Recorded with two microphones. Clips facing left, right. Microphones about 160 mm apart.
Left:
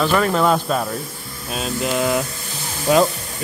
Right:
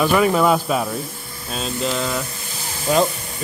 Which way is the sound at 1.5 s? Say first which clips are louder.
Left 1 dB; 5° left (ahead or behind).